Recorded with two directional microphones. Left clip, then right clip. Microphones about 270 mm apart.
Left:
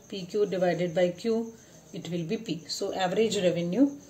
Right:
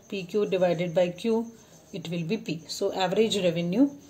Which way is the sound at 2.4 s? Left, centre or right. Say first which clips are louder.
Right 3 dB; right.